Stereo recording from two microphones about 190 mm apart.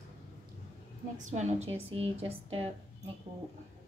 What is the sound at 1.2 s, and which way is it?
A woman's voice, 35° right (ahead or behind).